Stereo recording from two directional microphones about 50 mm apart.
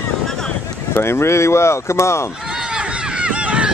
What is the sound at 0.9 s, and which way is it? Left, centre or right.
Speech, left.